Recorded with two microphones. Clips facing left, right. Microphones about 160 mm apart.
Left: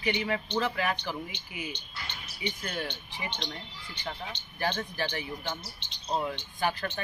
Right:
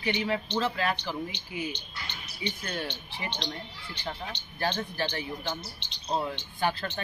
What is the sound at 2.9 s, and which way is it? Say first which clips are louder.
Speech: right 1 dB; 75° right (ahead or behind).